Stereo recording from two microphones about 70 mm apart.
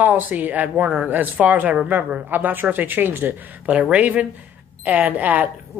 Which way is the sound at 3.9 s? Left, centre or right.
Centre.